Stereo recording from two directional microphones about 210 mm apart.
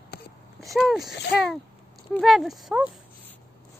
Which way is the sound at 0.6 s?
Centre (ahead or behind).